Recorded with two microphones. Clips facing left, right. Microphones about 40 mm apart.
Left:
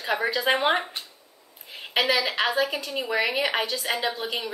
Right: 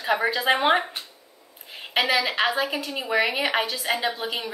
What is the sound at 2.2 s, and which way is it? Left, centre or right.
Speech, centre.